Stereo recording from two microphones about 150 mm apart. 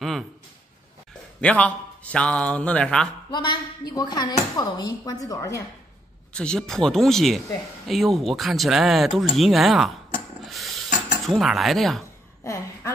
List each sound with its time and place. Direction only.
1.4 s a man's voice: 10° left (ahead or behind)
3.3 s speech: 30° left (ahead or behind)
6.3 s speech: 5° left (ahead or behind)
10.4 s a sound: centre (ahead or behind)